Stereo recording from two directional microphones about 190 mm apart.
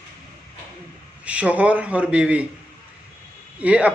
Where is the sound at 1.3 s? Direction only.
5° right (ahead or behind).